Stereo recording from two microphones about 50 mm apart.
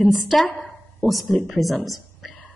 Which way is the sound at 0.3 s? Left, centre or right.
Centre.